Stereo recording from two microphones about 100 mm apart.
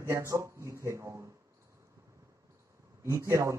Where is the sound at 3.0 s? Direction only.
30° right (ahead or behind).